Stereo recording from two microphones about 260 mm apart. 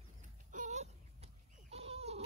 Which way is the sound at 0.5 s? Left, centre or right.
Right.